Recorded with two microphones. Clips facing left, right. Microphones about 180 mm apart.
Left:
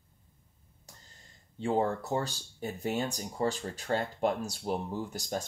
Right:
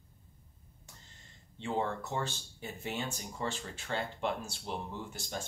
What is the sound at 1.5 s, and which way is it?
Speech, 40° left (ahead or behind).